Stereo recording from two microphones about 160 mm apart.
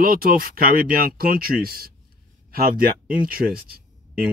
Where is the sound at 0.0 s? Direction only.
65° right (ahead or behind).